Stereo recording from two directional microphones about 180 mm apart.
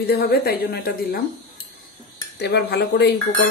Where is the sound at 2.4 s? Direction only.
65° left (ahead or behind).